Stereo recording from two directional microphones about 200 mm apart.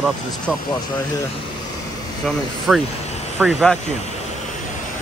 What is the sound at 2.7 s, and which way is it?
Speech, 5° right (ahead or behind).